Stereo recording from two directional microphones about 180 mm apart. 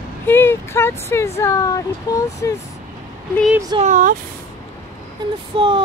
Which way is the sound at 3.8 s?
45° right (ahead or behind).